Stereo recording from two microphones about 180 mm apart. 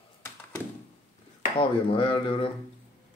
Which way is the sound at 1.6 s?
30° left (ahead or behind).